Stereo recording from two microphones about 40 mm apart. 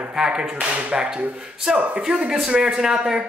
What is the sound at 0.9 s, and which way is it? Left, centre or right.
A man's voice, right.